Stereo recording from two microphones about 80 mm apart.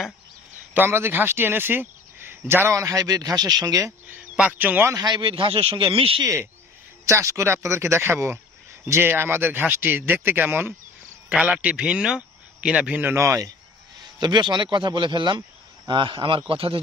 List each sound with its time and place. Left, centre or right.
0.7 s speech: right
4.4 s speech: centre
4.9 s a man's voice: right
6.2 s speech: right
11.2 s a man's voice: centre
13.1 s speech: right
14.2 s speech: right
15.9 s a man's voice: right